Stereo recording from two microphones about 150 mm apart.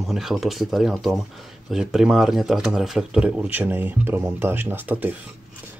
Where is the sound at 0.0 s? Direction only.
Centre (ahead or behind).